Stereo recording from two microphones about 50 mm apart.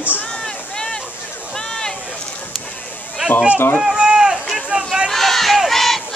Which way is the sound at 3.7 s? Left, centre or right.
Centre.